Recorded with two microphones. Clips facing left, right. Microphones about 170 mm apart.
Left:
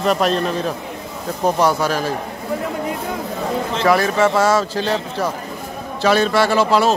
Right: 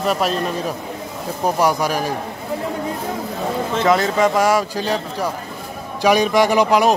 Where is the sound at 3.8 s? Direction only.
20° right (ahead or behind).